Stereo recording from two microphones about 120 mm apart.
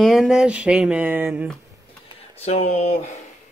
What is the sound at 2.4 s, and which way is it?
Speech, 70° left (ahead or behind).